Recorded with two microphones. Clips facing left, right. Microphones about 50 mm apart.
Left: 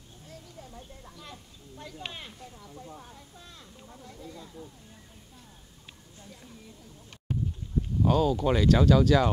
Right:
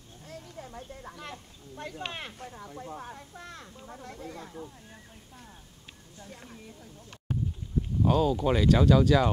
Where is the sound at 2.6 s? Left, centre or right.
Right.